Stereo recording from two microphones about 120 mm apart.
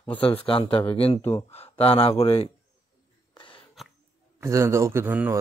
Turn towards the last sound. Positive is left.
turn(degrees=-20)  # may be behind; listen again after turning